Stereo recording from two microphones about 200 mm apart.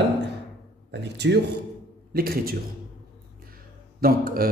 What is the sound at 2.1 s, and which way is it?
Speech, 50° right (ahead or behind).